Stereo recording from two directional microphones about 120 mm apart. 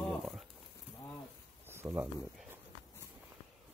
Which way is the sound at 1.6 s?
20° right (ahead or behind).